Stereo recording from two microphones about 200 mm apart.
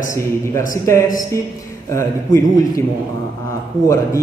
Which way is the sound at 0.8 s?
15° left (ahead or behind).